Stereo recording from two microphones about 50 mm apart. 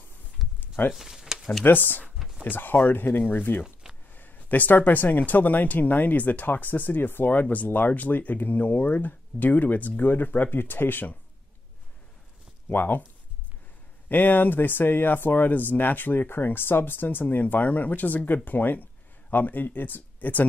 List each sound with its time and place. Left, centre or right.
0.4 s a sound: centre
1.6 s speech: left
12.6 s speech: left
14.0 s speech: left